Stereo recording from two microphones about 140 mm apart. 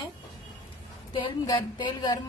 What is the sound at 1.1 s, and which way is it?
A woman's voice, 35° left (ahead or behind).